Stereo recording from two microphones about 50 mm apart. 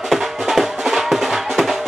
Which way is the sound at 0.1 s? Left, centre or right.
Centre.